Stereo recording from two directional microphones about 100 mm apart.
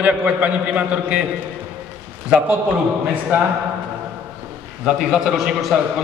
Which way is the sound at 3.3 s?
15° right (ahead or behind).